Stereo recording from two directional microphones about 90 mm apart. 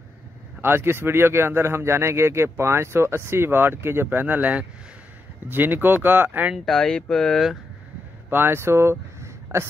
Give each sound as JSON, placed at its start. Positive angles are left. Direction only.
{"t": 0.6, "sound": "speech", "side_deg": -25}
{"t": 6.5, "sound": "speech", "side_deg": 0}
{"t": 8.3, "sound": "speech", "side_deg": -25}